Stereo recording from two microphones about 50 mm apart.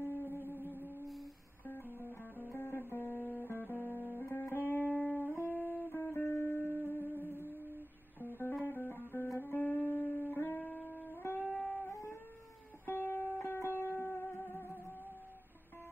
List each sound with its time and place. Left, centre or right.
0.0 s music: left
1.7 s guitar: left
2.5 s guitar: left
4.6 s music: left
8.6 s music: left
12.8 s music: left